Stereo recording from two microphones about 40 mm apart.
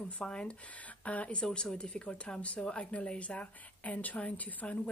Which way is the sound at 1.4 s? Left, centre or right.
Centre.